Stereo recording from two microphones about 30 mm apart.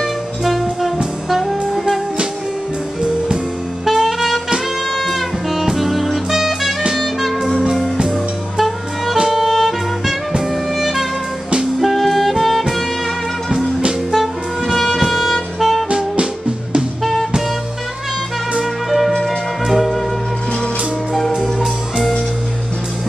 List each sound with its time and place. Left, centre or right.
0.0 s jazz: centre
1.3 s saxophone: centre
3.8 s saxophone: centre
4.9 s music: centre
7.0 s music: centre
11.8 s saxophone: centre
14.1 s music: centre
15.0 s music: centre
15.9 s music: right
17.0 s music: centre
18.6 s music: centre